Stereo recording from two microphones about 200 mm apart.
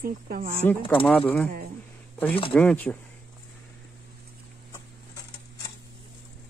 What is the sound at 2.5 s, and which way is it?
Speech, 5° left (ahead or behind).